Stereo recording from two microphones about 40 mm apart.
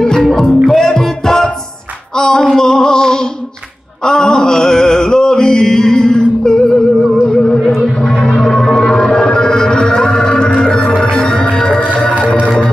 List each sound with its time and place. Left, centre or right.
0.0 s music: centre
2.1 s female singing: centre
4.0 s male singing: centre
7.3 s music: centre
8.0 s music: left